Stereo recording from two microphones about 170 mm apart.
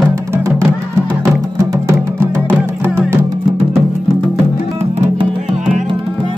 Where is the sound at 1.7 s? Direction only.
15° right (ahead or behind).